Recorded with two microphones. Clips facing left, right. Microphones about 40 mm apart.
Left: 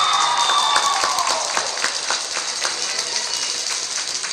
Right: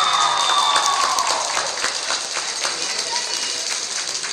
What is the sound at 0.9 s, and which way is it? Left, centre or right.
Applause, right.